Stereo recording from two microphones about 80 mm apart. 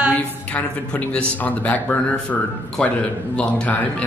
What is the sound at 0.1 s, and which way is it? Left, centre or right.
Speech, centre.